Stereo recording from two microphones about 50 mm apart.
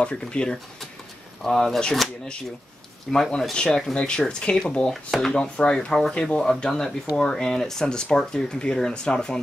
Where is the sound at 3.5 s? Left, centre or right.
Centre.